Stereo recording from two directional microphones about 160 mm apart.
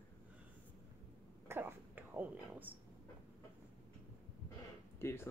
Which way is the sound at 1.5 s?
15° right (ahead or behind).